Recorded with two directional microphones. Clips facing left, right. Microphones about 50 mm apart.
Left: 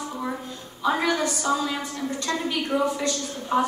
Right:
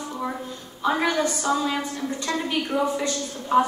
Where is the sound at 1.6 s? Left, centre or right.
Centre.